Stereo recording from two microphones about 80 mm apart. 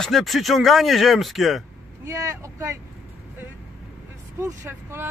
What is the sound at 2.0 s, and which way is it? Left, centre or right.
Speech, right.